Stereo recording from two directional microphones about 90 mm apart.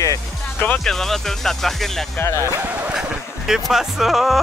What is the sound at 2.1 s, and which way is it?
Speech, 30° left (ahead or behind).